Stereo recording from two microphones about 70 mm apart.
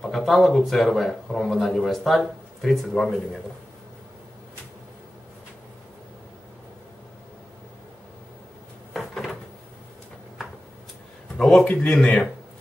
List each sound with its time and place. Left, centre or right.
0.0 s speech: centre
9.1 s cupboard open or close: centre
11.3 s speech: centre
11.6 s speech: centre